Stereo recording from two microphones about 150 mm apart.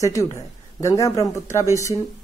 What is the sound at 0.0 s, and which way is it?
Speech, 20° left (ahead or behind).